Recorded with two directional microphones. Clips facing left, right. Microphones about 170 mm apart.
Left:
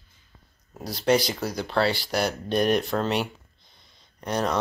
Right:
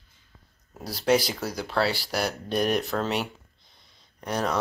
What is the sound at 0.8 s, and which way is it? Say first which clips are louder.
Speech: left 1 dB; 5° right (ahead or behind).